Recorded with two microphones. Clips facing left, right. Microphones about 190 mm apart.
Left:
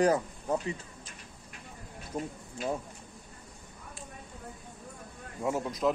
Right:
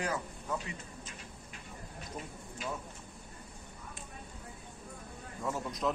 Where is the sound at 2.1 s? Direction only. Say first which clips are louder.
Left 9 dB; 45° left (ahead or behind).